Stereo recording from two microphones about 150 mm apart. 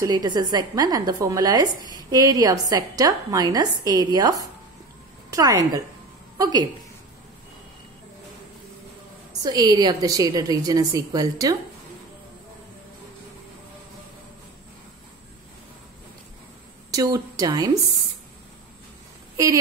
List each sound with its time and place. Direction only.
0.0 s a woman's voice: 25° right (ahead or behind)
9.4 s a woman's voice: 30° right (ahead or behind)
16.9 s a woman's voice: 25° right (ahead or behind)
19.3 s speech: 20° right (ahead or behind)